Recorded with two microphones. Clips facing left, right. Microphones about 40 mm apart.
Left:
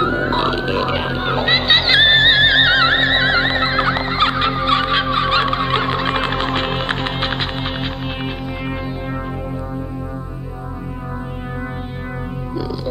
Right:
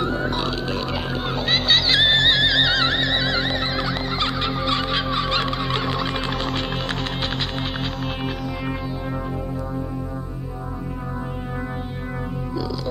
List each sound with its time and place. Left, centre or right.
0.0 s music: left